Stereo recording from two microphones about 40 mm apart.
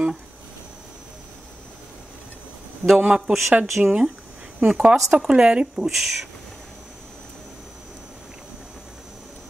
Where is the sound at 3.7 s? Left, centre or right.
Centre.